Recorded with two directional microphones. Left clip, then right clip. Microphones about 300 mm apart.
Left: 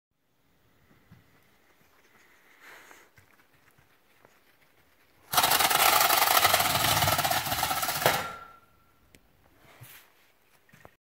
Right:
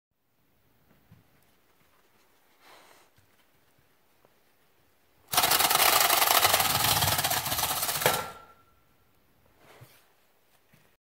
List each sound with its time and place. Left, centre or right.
5.3 s rub: centre